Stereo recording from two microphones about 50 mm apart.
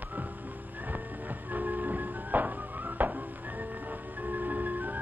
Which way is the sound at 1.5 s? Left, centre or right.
Right.